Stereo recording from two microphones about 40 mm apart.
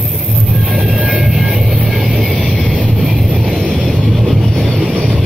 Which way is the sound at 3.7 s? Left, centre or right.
Centre.